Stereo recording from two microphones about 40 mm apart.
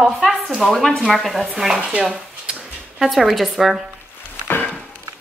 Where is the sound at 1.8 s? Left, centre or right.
Right.